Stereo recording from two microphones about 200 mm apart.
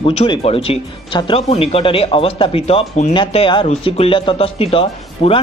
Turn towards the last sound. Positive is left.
turn(degrees=25)  # may be behind; listen again after turning